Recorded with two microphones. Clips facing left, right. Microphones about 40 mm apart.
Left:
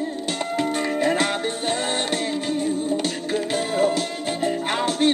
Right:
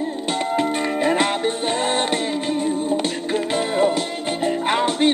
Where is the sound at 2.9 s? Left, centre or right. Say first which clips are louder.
Right 2 dB; right.